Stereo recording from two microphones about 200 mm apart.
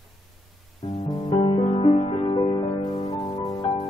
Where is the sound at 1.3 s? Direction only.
25° left (ahead or behind).